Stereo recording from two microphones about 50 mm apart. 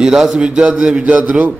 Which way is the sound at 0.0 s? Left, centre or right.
Centre.